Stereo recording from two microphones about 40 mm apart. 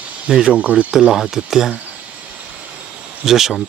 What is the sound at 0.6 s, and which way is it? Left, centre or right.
Speech, right.